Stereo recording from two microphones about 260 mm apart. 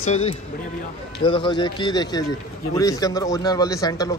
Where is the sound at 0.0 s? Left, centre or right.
Left.